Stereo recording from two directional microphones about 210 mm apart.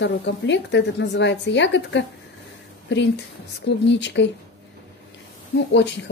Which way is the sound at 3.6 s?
55° left (ahead or behind).